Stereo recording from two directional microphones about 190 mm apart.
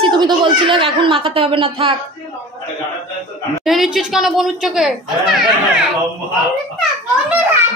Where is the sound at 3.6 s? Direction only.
Centre (ahead or behind).